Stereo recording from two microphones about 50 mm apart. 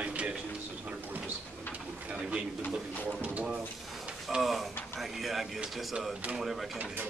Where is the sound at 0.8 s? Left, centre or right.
Right.